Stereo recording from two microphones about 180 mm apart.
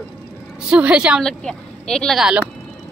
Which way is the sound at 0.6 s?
5° right (ahead or behind).